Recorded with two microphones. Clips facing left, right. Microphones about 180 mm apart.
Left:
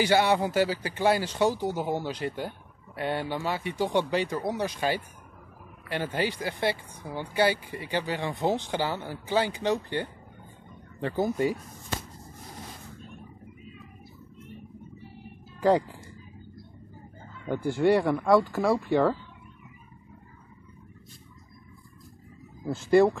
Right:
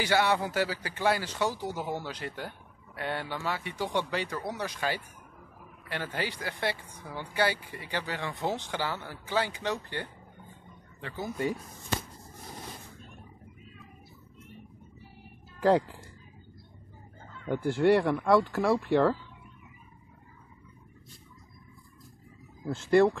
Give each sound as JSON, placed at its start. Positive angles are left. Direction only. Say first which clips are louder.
{"t": 0.0, "sound": "speech", "louder": "left 4 dB", "side_deg": 20}
{"t": 11.0, "sound": "speech", "louder": "left 10 dB", "side_deg": 40}
{"t": 15.6, "sound": "speech", "louder": "left 1 dB", "side_deg": 0}
{"t": 17.5, "sound": "speech", "louder": "left 1 dB", "side_deg": 0}
{"t": 22.8, "sound": "speech", "louder": "left 2 dB", "side_deg": 5}